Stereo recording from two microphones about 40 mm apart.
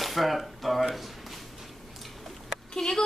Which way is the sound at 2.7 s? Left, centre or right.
Centre.